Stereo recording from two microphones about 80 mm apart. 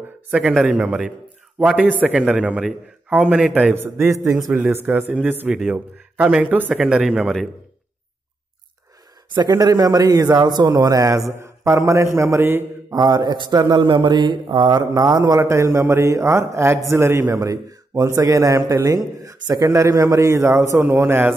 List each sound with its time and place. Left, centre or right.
0.3 s a man's voice: centre
3.7 s a man's voice: right
4.8 s speech: right
6.7 s speech: centre
9.5 s a man's voice: right
10.7 s a man's voice: right
12.9 s a man's voice: right